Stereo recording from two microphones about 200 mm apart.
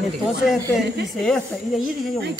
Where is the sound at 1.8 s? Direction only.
55° right (ahead or behind).